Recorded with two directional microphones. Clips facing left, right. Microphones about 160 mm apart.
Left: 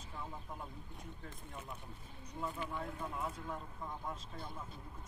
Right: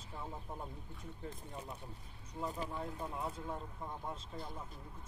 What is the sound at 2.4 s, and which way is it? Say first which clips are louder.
Speech: right 1 dB; 35° right (ahead or behind).